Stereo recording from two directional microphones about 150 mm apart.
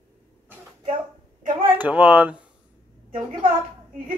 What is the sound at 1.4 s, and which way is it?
Speech, 70° right (ahead or behind).